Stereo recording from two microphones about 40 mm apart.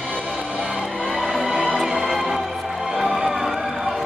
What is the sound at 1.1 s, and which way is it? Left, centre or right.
Music, centre.